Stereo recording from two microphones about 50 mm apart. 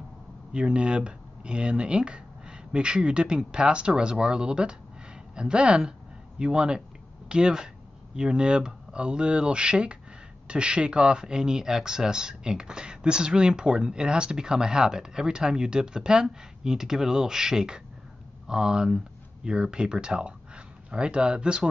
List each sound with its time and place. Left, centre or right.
0.5 s speech: centre